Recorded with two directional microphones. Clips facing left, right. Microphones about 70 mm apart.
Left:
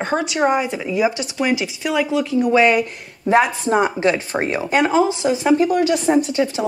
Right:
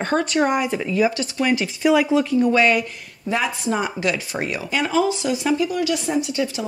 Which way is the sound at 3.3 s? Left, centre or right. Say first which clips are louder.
Left 7 dB; left.